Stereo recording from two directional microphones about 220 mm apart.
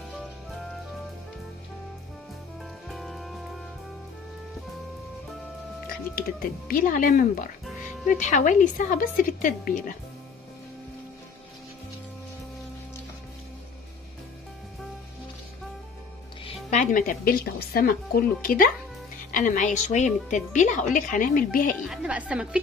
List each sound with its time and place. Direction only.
2.9 s music: centre (ahead or behind)
6.7 s a woman's voice: 40° left (ahead or behind)
16.7 s a woman's voice: 35° left (ahead or behind)
21.8 s a woman's voice: 5° right (ahead or behind)